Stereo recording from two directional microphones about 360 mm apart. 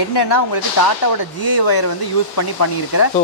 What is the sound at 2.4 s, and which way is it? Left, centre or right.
Speech, left.